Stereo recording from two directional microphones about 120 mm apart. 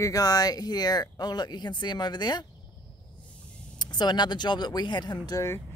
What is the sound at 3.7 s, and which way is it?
Speech, 35° left (ahead or behind).